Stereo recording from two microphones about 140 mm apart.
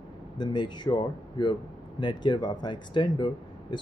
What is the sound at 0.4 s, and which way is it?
Speech, 30° left (ahead or behind).